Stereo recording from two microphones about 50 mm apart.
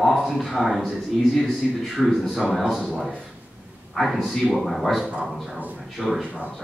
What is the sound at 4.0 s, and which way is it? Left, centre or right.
Speech, centre.